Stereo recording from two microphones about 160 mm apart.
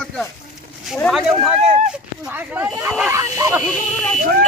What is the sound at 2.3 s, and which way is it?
Speech, 10° right (ahead or behind).